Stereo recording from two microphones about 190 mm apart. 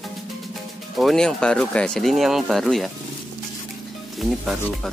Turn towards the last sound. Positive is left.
turn(degrees=0)  # may be behind; listen again after turning